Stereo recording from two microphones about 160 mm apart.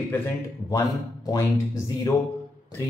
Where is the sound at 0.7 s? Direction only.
25° left (ahead or behind).